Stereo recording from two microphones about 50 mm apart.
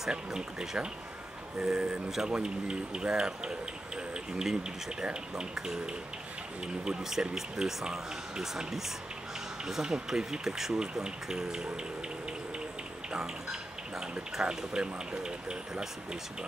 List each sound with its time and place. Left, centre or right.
0.1 s speech: centre
13.1 s speech: centre